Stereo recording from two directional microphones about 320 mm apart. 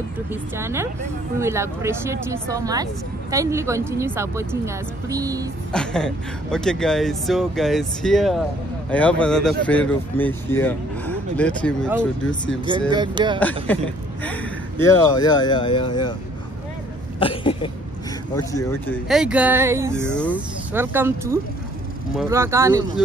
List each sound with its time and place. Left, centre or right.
0.3 s speech: centre
5.7 s speech: centre
12.9 s speech: centre
13.4 s speech: centre
17.2 s throat clearing: centre
18.3 s speech: centre
19.0 s speech: centre
20.2 s speech: centre